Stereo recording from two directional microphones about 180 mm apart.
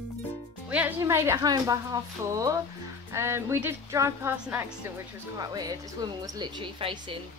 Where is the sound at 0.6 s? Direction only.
10° right (ahead or behind).